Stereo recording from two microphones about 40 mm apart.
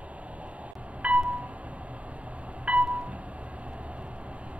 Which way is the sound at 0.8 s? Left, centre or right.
Right.